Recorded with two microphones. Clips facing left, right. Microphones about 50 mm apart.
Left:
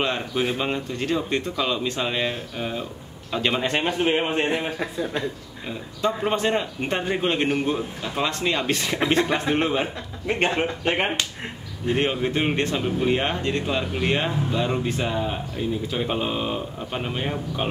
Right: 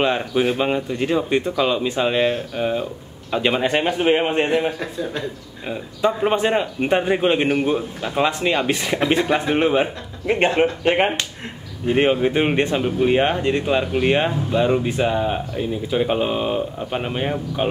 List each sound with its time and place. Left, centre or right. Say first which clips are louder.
0.0 s speech: right 5 dB; centre
5.7 s speech: right 5 dB; centre